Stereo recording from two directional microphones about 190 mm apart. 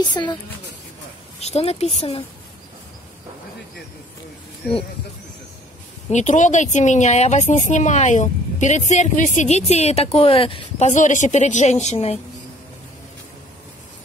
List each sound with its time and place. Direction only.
0.1 s speech: 25° left (ahead or behind)
1.4 s speech: 35° left (ahead or behind)
6.0 s speech: 40° left (ahead or behind)